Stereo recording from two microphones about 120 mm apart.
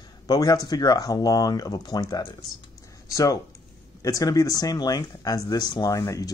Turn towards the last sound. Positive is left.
turn(degrees=30)  # may be behind; listen again after turning